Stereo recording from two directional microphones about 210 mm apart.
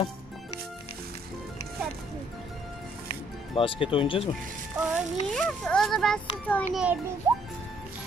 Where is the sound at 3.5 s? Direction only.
25° left (ahead or behind).